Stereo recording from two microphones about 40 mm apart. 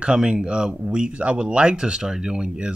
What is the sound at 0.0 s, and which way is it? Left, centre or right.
Speech, centre.